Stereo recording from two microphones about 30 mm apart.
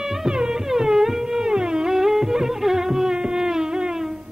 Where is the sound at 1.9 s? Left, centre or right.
Centre.